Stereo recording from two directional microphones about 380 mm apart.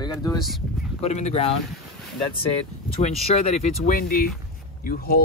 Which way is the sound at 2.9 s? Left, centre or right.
Centre.